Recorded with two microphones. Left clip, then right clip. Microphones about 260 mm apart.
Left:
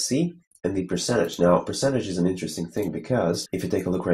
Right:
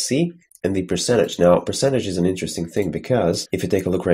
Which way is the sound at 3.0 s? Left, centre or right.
Right.